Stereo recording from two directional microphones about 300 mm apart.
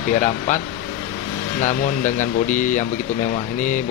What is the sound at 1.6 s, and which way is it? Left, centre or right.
Speech, left.